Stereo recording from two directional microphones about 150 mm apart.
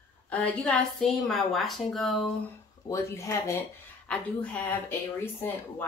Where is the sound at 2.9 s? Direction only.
20° left (ahead or behind).